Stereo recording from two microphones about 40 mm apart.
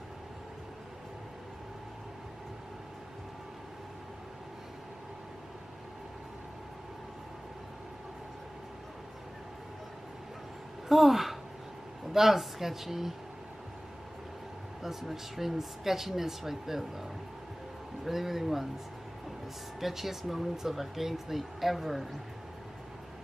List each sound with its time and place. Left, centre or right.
10.9 s a sound: centre
12.1 s speech: centre
14.8 s speech: centre
18.0 s speech: centre
19.8 s speech: centre